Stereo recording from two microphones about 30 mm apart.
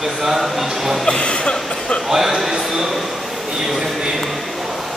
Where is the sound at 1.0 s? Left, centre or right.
Left.